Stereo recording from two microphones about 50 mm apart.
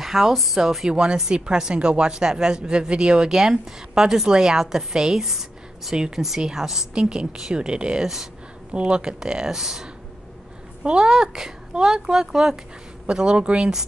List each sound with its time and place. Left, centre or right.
0.0 s speech: centre
0.8 s a woman's voice: centre